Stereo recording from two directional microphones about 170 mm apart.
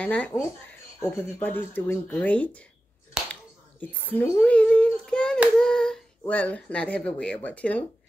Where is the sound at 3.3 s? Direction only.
10° left (ahead or behind).